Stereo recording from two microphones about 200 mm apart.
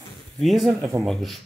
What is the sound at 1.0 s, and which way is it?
Speech, centre (ahead or behind).